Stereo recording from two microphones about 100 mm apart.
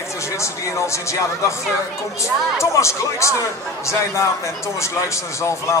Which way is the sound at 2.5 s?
30° left (ahead or behind).